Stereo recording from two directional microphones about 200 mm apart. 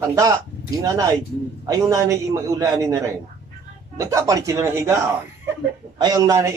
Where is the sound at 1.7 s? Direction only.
15° right (ahead or behind).